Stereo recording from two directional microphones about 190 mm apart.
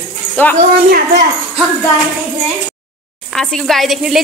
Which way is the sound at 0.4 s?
10° left (ahead or behind).